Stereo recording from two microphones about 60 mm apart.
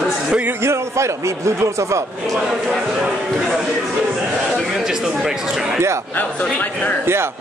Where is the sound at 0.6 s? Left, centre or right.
Right.